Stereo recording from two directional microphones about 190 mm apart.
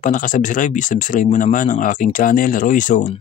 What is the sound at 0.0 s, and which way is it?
Speech, 45° left (ahead or behind).